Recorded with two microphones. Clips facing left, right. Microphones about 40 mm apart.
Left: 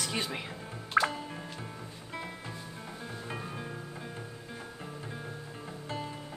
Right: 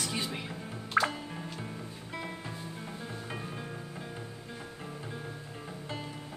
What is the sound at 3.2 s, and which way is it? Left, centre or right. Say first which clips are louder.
Music: left 3 dB; centre.